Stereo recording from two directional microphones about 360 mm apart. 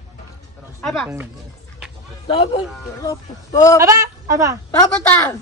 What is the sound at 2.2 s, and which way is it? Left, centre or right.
A man's voice, centre.